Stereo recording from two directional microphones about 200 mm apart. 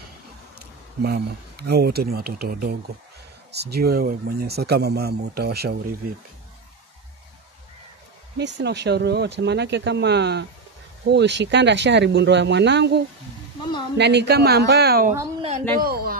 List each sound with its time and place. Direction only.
0.6 s speech: 50° right (ahead or behind)
8.4 s speech: 60° right (ahead or behind)